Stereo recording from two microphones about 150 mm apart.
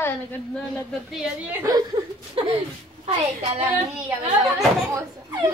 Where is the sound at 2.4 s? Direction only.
40° right (ahead or behind).